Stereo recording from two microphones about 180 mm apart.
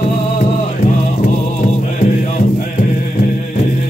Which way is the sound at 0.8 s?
50° left (ahead or behind).